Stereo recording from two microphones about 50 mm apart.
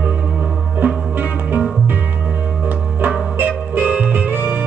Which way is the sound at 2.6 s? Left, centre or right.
Right.